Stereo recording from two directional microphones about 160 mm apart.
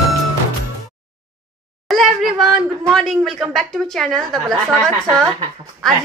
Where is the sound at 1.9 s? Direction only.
Centre (ahead or behind).